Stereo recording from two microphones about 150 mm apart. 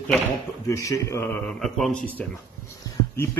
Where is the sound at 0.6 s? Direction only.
20° left (ahead or behind).